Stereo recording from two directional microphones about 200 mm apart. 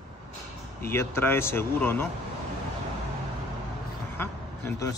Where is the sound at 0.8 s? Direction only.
10° left (ahead or behind).